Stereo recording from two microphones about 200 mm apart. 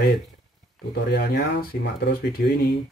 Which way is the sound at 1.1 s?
50° left (ahead or behind).